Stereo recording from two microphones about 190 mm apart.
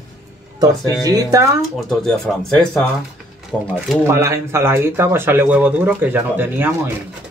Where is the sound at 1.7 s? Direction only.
Centre (ahead or behind).